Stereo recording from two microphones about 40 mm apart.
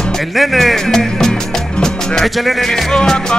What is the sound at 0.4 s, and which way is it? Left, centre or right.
Music, centre.